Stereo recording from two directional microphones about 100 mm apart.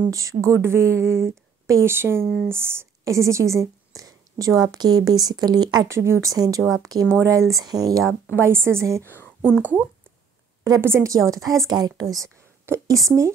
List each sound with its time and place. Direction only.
0.1 s a woman's voice: 35° right (ahead or behind)
5.9 s speech: 25° right (ahead or behind)
6.3 s a woman's voice: 35° right (ahead or behind)
8.1 s speech: 25° right (ahead or behind)
9.6 s speech: 15° right (ahead or behind)
10.6 s a woman's voice: 30° right (ahead or behind)